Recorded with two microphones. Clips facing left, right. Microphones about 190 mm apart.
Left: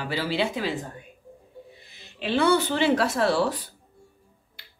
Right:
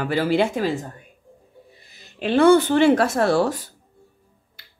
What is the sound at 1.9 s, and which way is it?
Speech, 50° right (ahead or behind).